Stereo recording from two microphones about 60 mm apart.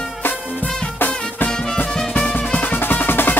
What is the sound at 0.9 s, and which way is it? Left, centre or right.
Music, left.